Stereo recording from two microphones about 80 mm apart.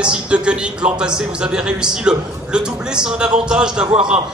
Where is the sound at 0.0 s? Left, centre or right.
Centre.